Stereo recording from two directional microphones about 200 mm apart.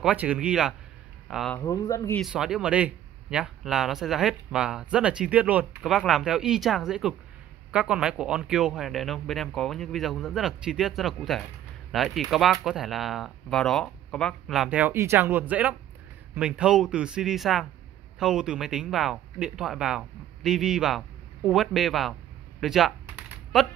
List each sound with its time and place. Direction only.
0.0 s speech: 5° right (ahead or behind)
1.6 s speech: 15° left (ahead or behind)
2.1 s speech: centre (ahead or behind)